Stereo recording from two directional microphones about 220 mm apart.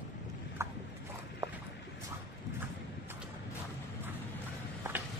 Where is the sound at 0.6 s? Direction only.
10° right (ahead or behind).